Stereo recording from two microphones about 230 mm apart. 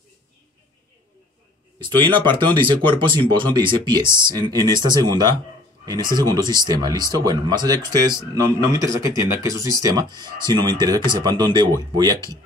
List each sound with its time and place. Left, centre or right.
1.8 s speech: centre